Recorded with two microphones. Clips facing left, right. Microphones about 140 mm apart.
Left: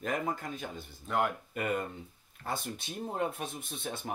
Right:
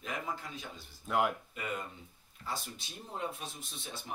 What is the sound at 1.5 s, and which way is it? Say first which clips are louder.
Speech: left 7 dB; 55° left (ahead or behind).